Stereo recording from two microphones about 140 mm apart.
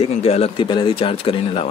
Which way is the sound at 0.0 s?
45° left (ahead or behind).